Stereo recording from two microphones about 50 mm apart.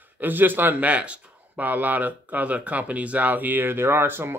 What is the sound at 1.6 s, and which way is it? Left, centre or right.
Speech, right.